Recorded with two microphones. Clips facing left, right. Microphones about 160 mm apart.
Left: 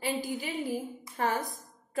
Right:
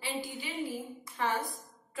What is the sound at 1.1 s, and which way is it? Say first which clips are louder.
Speech: left 2 dB; 40° left (ahead or behind).